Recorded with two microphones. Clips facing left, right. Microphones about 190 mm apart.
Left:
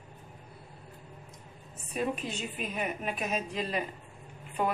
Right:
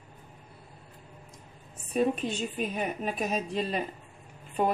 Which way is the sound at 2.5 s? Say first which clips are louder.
Right 3 dB; 35° right (ahead or behind).